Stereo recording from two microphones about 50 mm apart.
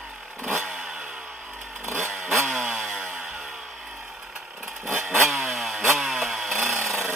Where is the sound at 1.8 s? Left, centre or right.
Right.